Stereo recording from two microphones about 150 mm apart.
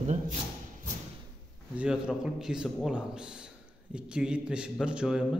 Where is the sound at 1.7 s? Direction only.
5° right (ahead or behind).